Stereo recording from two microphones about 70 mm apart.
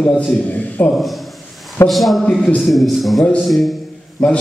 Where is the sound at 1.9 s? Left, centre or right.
Centre.